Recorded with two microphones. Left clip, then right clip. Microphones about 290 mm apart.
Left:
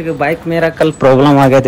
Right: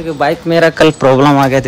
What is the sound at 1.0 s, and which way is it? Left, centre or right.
Speech, centre.